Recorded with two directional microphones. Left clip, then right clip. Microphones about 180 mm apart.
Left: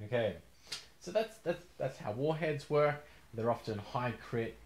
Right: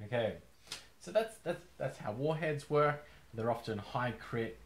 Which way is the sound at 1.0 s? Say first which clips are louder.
Right 1 dB; 25° left (ahead or behind).